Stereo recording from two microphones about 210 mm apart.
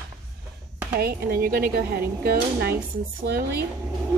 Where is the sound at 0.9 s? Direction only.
45° right (ahead or behind).